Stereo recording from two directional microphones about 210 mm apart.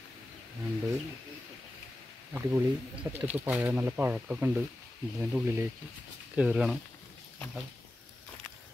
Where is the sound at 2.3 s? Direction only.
10° right (ahead or behind).